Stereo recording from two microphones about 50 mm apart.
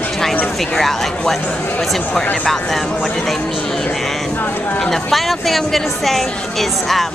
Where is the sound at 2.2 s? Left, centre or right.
Left.